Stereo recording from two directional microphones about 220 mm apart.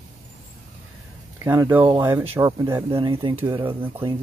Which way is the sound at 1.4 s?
10° right (ahead or behind).